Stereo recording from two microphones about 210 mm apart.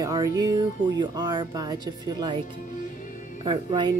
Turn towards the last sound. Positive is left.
turn(degrees=-20)  # may be behind; listen again after turning